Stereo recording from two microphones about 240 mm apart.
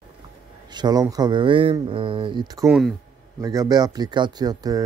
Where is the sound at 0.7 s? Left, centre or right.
Centre.